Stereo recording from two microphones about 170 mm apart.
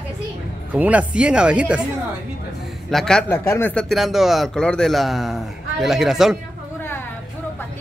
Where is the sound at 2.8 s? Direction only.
5° left (ahead or behind).